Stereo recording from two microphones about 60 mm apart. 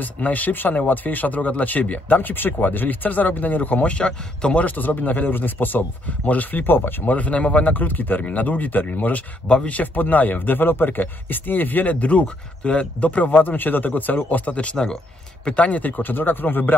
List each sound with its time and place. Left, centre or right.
0.0 s a man's voice: left
4.6 s a man's voice: left